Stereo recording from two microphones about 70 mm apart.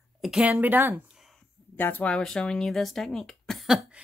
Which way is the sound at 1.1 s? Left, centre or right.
Centre.